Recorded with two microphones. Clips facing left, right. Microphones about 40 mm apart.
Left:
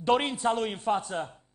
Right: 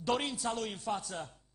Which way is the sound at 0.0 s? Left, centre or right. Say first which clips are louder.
Left 8 dB; left.